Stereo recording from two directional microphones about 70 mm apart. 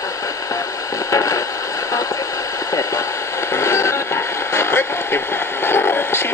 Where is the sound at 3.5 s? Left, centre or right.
Left.